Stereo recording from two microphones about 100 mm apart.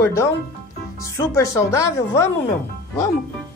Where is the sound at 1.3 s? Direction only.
30° left (ahead or behind).